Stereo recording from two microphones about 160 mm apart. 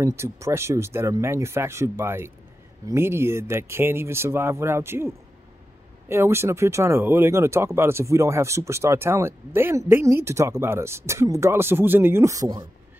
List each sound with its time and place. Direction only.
0.0 s speech: 15° right (ahead or behind)